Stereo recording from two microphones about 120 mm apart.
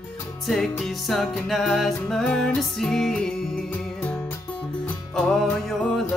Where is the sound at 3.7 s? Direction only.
15° left (ahead or behind).